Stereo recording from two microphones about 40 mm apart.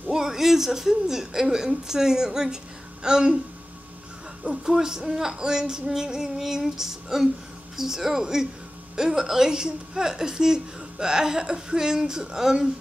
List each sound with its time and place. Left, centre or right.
0.1 s a woman's voice: centre
4.5 s a woman's voice: centre